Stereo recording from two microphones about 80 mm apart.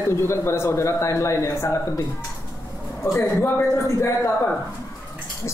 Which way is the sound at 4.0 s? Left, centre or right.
Left.